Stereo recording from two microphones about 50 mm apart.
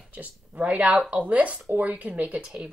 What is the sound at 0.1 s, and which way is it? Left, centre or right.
Speech, right.